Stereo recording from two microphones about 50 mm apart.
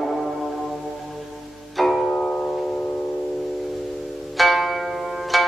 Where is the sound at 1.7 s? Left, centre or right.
Centre.